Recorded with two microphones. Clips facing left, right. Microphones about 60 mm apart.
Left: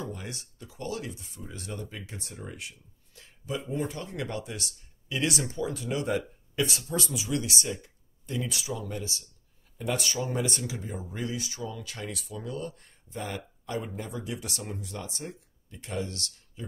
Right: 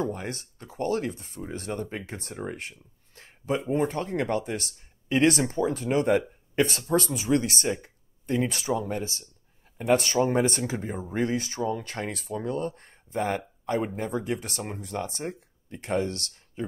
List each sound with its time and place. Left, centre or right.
0.0 s speech: right
3.2 s a sound: right
3.7 s speech: right